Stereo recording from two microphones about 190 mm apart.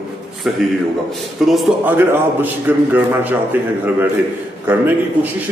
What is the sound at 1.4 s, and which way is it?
A man's voice, 5° right (ahead or behind).